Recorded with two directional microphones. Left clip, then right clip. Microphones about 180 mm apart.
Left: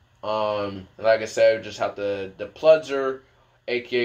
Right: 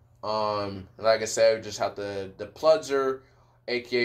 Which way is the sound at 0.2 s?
20° left (ahead or behind).